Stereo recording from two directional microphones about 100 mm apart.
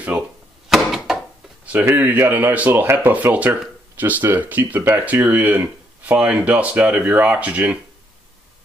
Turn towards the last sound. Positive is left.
turn(degrees=-15)  # may be behind; listen again after turning